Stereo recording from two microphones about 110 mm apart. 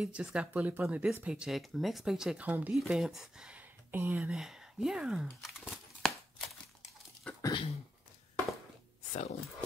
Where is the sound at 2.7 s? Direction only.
5° right (ahead or behind).